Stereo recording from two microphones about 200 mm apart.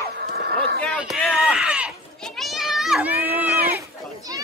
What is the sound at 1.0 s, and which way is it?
Children playing, 5° right (ahead or behind).